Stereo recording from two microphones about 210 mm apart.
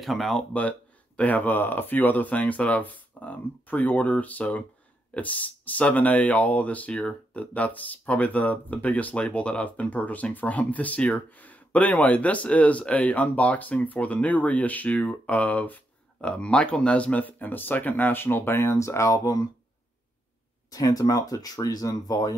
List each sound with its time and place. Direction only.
0.0 s speech: centre (ahead or behind); by 19.4 s 15° left (ahead or behind)
20.7 s speech: 15° left (ahead or behind)